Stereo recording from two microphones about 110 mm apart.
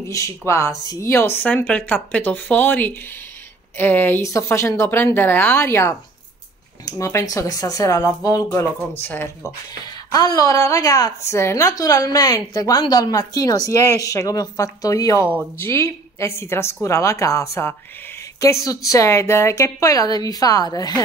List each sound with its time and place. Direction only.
0.2 s a woman's voice: 30° left (ahead or behind)
9.0 s a woman's voice: 20° left (ahead or behind)
10.1 s a woman's voice: 30° left (ahead or behind)